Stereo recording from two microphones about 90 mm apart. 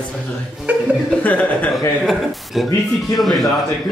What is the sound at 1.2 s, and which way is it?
Speech, 15° left (ahead or behind).